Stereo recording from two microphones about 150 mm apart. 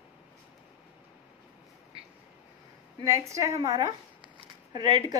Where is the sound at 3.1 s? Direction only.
20° right (ahead or behind).